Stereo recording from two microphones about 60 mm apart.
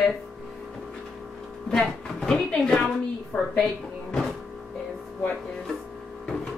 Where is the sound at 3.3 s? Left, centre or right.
Left.